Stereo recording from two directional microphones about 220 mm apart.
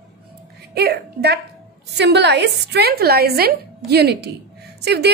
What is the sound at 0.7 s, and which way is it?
A woman's voice, 45° right (ahead or behind).